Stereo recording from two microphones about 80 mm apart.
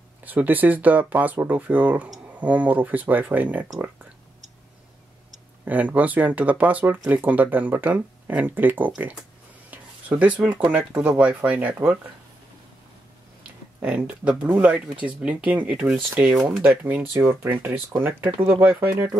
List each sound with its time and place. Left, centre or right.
0.2 s speech: right
5.7 s speech: centre
9.7 s a sound: centre
10.7 s speech: centre
13.7 s speech: centre
16.8 s speech: right